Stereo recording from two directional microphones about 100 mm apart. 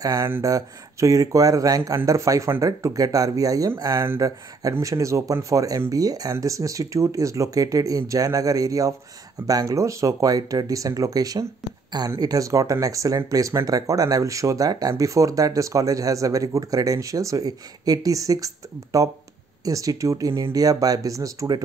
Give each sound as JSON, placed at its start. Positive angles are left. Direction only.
{"t": 0.0, "sound": "speech", "side_deg": -35}